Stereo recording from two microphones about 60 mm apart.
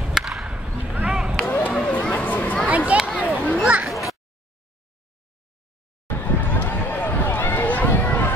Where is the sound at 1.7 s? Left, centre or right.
Centre.